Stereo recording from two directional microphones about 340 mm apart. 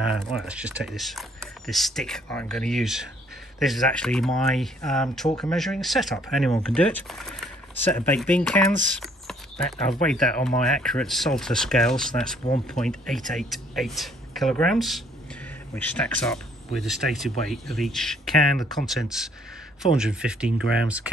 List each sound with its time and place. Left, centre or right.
0.2 s speech: centre
12.4 s speech: centre
12.8 s speech: centre